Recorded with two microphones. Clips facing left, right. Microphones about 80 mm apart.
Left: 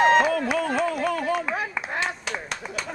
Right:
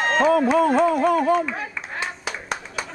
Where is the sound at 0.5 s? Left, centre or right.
Right.